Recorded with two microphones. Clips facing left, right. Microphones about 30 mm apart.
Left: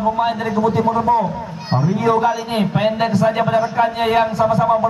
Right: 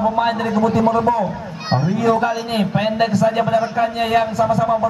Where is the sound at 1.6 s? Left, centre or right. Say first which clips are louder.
Even; right.